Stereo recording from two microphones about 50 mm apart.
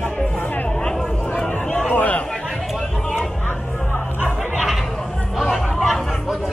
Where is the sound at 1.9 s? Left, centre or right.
Left.